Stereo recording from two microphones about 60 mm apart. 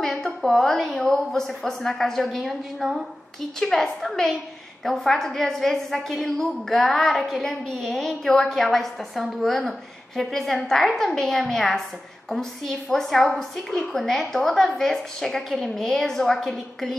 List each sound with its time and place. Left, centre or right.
0.0 s a woman's voice: centre
3.5 s a woman's voice: centre